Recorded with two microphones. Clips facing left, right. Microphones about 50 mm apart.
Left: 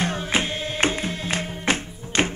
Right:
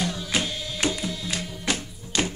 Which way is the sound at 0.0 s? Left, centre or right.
Left.